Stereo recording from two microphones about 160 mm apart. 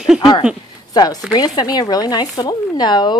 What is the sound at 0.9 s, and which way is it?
Speech, 25° left (ahead or behind).